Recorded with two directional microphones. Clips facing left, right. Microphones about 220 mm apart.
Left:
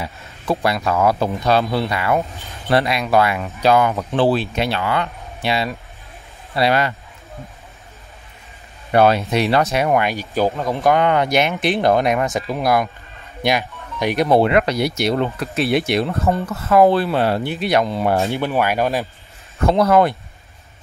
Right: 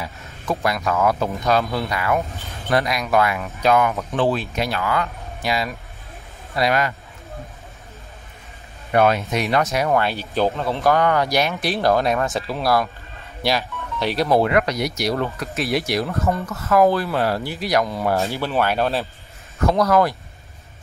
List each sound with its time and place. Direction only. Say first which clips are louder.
0.0 s speech: left 3 dB; 30° left (ahead or behind)
8.9 s speech: left 3 dB; 30° left (ahead or behind)
9.8 s speech: left 2 dB; 15° left (ahead or behind)
19.6 s speech: left 3 dB; 25° left (ahead or behind)